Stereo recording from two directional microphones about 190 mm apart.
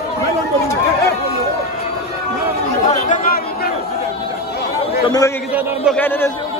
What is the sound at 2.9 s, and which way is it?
Chatter, 45° left (ahead or behind).